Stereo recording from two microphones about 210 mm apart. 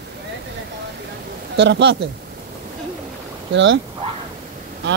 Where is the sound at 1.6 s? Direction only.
55° right (ahead or behind).